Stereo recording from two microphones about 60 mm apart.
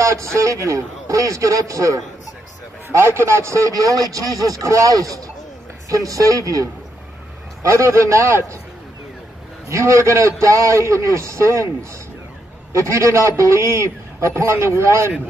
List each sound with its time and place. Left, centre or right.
0.0 s a man's voice: right
3.0 s speech: right
7.6 s a man's voice: right
9.7 s a man's voice: right